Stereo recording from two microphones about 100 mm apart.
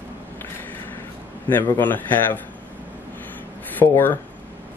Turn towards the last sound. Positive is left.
turn(degrees=20)  # may be behind; listen again after turning